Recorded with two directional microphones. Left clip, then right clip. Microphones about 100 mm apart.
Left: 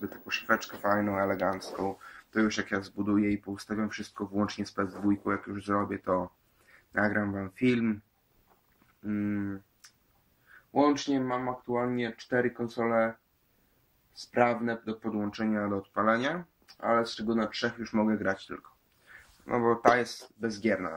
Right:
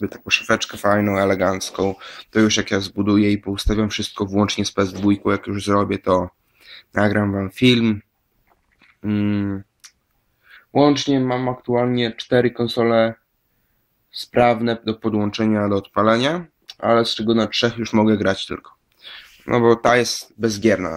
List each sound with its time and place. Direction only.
0.9 s speech: 25° right (ahead or behind)
9.0 s speech: 35° right (ahead or behind)
10.7 s speech: 50° right (ahead or behind)
11.1 s speech: 35° right (ahead or behind)
14.3 s speech: 30° right (ahead or behind)
16.9 s speech: 40° right (ahead or behind)
17.6 s speech: 30° right (ahead or behind)